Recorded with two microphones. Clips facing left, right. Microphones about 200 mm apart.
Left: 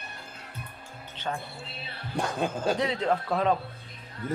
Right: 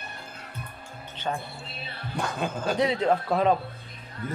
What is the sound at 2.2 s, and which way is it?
Speech, 30° left (ahead or behind).